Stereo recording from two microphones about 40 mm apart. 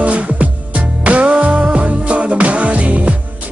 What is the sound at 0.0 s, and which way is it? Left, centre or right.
Music, right.